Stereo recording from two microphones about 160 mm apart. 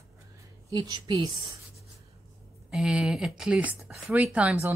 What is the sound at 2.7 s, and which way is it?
Speech, centre (ahead or behind).